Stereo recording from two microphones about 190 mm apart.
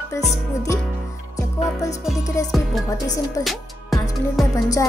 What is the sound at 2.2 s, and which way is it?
Speech, 15° left (ahead or behind).